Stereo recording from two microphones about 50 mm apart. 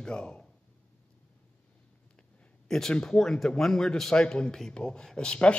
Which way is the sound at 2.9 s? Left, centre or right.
Centre.